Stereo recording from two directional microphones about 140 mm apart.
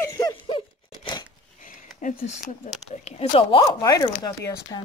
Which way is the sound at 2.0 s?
65° left (ahead or behind).